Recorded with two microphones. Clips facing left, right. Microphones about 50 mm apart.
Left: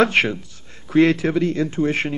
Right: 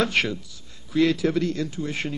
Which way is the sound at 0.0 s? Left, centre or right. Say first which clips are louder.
Left 6 dB; left.